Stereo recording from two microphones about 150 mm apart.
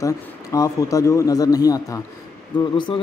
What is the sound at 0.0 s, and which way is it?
Speech, 20° left (ahead or behind).